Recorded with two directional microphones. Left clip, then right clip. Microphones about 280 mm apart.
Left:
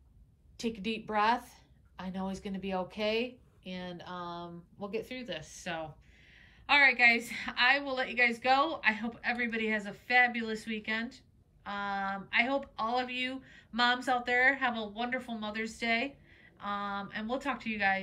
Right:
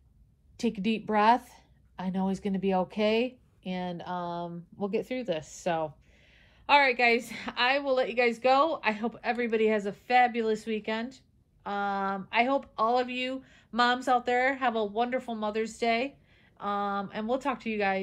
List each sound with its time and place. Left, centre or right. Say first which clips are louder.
0.6 s a woman's voice: right 5 dB; right